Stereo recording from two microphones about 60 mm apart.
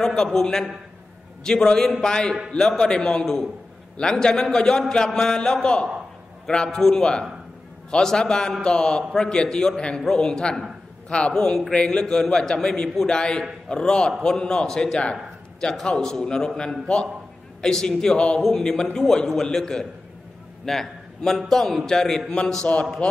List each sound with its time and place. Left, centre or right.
0.0 s a man's voice: centre